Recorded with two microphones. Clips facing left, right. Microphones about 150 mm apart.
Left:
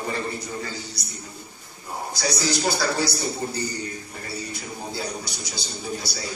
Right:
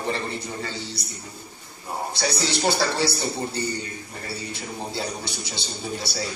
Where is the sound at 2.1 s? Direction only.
25° right (ahead or behind).